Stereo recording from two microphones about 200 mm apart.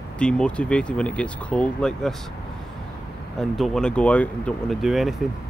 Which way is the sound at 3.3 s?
Centre (ahead or behind).